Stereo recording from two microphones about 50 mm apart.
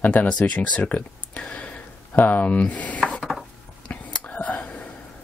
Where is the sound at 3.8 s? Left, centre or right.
Left.